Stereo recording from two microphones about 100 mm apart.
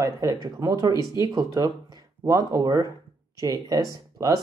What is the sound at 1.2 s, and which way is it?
Speech, 40° right (ahead or behind).